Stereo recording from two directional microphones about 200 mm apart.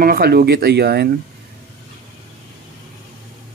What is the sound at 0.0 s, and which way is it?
Speech, 50° right (ahead or behind).